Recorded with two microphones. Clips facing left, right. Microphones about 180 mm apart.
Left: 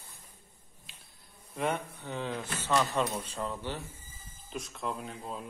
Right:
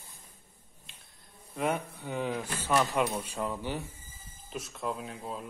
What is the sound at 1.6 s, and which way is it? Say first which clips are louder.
A man's voice: right 1 dB; 10° right (ahead or behind).